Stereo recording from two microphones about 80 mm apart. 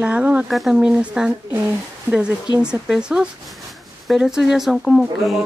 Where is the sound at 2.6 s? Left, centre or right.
Centre.